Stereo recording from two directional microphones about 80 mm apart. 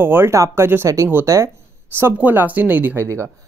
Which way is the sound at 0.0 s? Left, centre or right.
Right.